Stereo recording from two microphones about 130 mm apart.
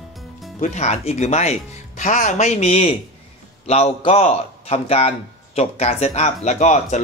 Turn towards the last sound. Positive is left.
turn(degrees=65)  # may be behind; listen again after turning